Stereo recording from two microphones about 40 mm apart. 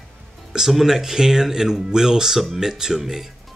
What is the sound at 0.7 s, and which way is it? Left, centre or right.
Speech, centre.